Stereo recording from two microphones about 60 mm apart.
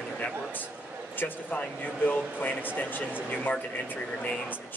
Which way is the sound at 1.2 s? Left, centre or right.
Left.